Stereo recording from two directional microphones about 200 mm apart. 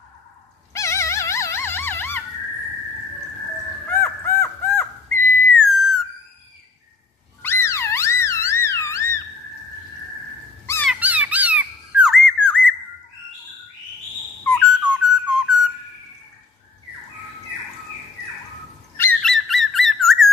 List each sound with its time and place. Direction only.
0.7 s dog: 15° left (ahead or behind)
3.9 s a sound: 10° left (ahead or behind)
5.7 s whistle: centre (ahead or behind)
7.4 s music: 15° left (ahead or behind)
10.9 s squawk: 5° right (ahead or behind)
14.4 s whistle: 5° left (ahead or behind)
14.8 s whistle: 5° right (ahead or behind)
18.9 s bird: 5° left (ahead or behind)